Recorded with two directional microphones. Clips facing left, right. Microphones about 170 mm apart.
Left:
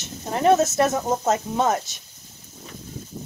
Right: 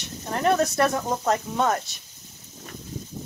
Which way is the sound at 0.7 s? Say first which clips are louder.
Left 2 dB; 20° left (ahead or behind).